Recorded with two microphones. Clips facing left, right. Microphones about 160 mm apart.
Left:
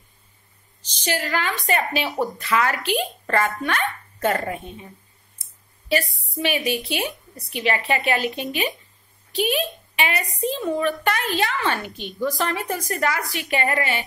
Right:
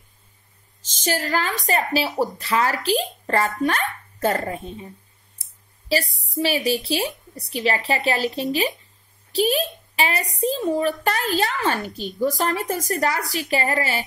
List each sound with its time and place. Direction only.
0.8 s a child's voice: 45° right (ahead or behind)
6.4 s a child's voice: 40° right (ahead or behind)